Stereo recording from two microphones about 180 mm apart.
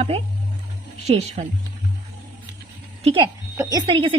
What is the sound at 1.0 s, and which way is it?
Speech, 35° right (ahead or behind).